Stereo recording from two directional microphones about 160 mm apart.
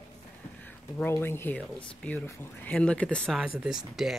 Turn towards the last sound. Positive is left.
turn(degrees=0)  # may be behind; listen again after turning